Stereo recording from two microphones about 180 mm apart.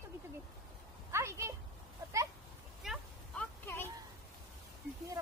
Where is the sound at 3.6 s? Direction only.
10° left (ahead or behind).